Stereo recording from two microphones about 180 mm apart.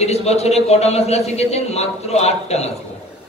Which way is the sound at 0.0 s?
35° left (ahead or behind).